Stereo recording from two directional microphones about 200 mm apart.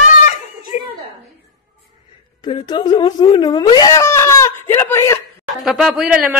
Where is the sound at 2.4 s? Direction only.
20° left (ahead or behind).